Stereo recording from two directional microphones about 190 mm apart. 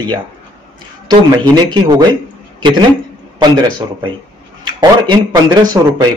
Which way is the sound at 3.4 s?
25° right (ahead or behind).